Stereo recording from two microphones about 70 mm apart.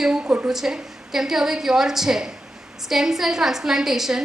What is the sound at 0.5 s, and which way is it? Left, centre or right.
A woman's voice, centre.